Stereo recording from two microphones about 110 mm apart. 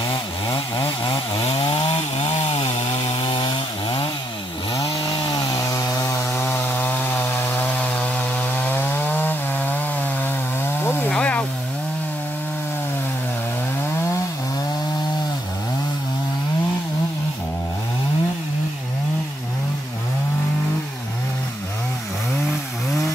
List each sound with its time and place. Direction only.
0.1 s chainsaw: 50° left (ahead or behind)
2.2 s chainsaw: 75° left (ahead or behind)
3.3 s chainsaw: 45° left (ahead or behind); by 11.1 s 20° left (ahead or behind)
11.1 s a sound: 10° left (ahead or behind)